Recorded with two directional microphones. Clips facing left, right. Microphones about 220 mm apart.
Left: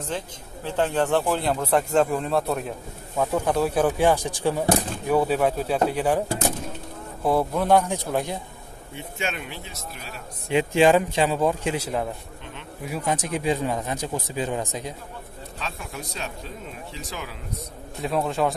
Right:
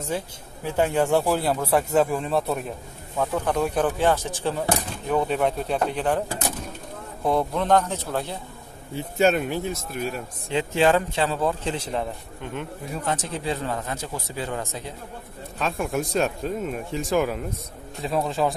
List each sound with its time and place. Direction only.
0.7 s speech: 10° right (ahead or behind); by 6.2 s 10° left (ahead or behind)
7.2 s speech: 5° left (ahead or behind)
8.9 s speech: 40° right (ahead or behind)
10.5 s speech: 15° left (ahead or behind)
15.6 s speech: 50° right (ahead or behind)
18.0 s a man's voice: centre (ahead or behind)